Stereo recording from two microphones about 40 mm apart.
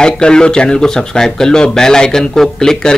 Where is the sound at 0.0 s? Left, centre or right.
Left.